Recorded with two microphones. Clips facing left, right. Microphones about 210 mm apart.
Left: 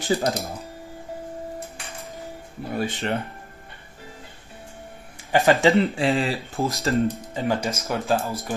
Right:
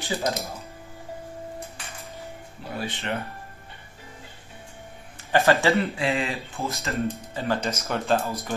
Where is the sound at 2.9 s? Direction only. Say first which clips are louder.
Left 4 dB; 30° left (ahead or behind).